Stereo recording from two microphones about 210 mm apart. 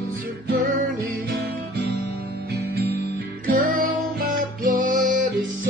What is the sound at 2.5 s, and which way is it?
Music, 50° right (ahead or behind).